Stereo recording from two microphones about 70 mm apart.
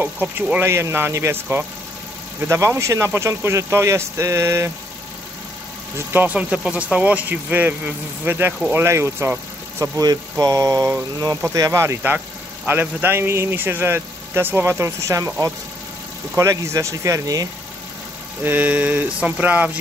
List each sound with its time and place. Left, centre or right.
0.0 s speech: right
0.7 s speech: right
2.4 s speech: right
6.2 s speech: centre; by 9.3 s right
9.8 s speech: right
12.6 s speech: right
16.3 s speech: right
18.4 s speech: right